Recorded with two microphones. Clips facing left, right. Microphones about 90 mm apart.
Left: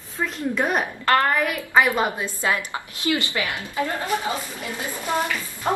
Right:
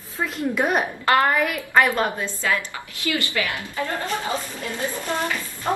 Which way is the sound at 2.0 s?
15° left (ahead or behind).